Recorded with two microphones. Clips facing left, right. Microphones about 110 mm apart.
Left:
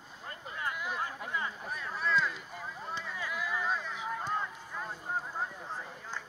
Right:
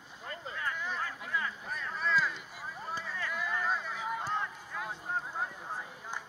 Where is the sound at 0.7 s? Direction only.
10° left (ahead or behind).